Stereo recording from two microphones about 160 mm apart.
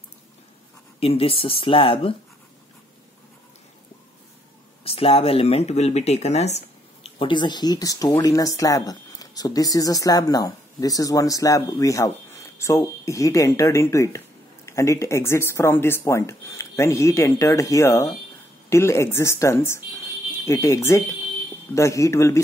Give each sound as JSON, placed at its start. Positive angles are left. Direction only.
{"t": 0.9, "sound": "speech", "side_deg": 35}
{"t": 4.8, "sound": "speech", "side_deg": 35}